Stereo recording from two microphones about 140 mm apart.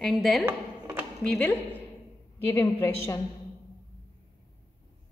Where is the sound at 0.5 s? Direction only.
15° right (ahead or behind).